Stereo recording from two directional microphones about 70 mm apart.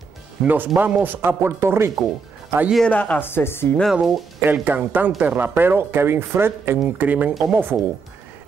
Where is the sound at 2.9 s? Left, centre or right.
Left.